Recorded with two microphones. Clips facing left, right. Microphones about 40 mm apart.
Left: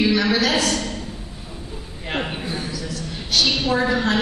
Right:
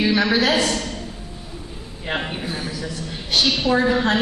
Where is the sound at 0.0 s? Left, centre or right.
Right.